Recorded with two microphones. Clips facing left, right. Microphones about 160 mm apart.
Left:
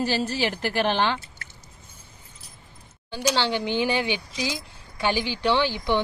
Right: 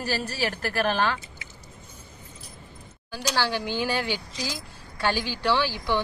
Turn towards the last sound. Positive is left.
turn(degrees=20)  # may be behind; listen again after turning